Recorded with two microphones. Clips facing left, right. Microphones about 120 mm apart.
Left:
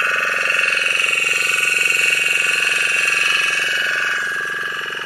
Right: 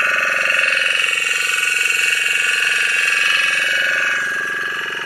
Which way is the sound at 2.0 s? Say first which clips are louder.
Right 1 dB; 45° left (ahead or behind).